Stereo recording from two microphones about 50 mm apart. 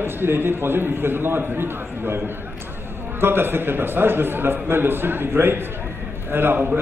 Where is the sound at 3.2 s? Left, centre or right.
Right.